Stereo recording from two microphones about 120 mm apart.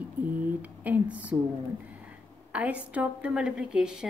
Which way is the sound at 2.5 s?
10° right (ahead or behind).